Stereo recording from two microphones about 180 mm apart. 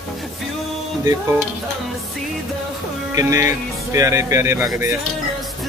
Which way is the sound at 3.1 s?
15° right (ahead or behind).